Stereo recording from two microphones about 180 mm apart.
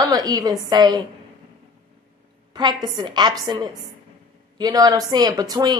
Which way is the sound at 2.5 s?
25° right (ahead or behind).